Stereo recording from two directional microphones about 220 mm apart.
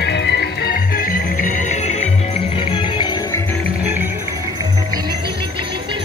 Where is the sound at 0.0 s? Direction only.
50° left (ahead or behind); by 2.0 s 30° left (ahead or behind).